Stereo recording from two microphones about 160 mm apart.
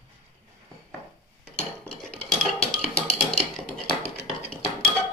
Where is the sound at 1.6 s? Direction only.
5° left (ahead or behind).